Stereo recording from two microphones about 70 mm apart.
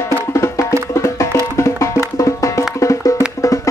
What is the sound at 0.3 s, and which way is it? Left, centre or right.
Music, left.